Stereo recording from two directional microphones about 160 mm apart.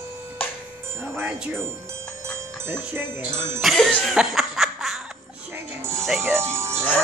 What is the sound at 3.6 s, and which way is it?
Music, centre (ahead or behind).